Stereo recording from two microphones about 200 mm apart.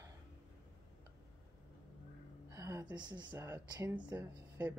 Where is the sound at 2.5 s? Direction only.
15° right (ahead or behind).